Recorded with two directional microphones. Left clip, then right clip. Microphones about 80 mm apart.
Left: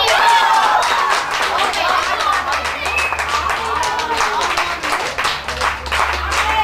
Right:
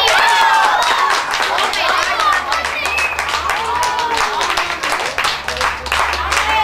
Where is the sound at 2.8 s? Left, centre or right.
Centre.